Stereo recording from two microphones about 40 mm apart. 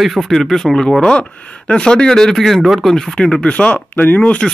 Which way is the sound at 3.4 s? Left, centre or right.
Left.